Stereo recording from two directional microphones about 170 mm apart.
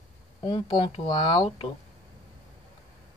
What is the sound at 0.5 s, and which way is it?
Speech, 25° left (ahead or behind).